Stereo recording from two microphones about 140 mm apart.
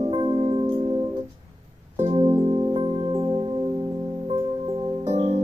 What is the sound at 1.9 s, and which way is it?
Music, 50° right (ahead or behind).